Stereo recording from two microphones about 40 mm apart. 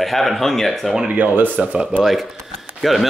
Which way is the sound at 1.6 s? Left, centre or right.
Right.